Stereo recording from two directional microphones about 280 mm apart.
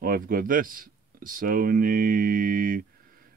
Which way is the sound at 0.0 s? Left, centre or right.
Right.